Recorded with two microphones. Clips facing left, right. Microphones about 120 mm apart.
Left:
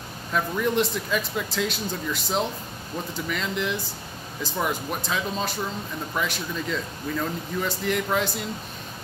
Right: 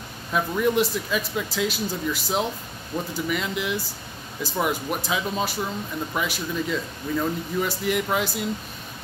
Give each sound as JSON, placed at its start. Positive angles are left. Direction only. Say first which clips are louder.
{"t": 0.3, "sound": "speech", "louder": "right 2 dB", "side_deg": -5}